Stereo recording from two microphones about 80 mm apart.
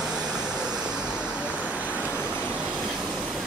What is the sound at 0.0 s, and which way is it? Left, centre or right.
Vehicle, centre.